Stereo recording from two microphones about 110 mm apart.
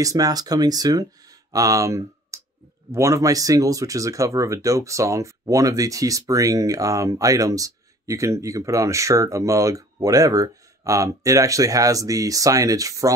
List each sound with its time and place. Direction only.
0.0 s speech: 35° right (ahead or behind)